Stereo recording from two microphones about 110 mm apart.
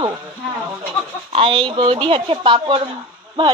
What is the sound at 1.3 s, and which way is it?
A woman's voice, 50° right (ahead or behind).